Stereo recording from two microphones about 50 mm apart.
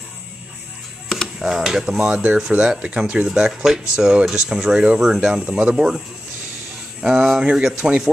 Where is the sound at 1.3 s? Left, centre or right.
Centre.